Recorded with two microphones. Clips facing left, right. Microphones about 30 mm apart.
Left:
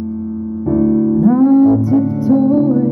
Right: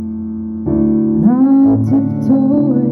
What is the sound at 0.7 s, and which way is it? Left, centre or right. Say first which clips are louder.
Music: even; centre.